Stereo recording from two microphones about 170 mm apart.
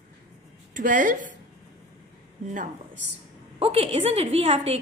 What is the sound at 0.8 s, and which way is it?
Speech, 50° right (ahead or behind).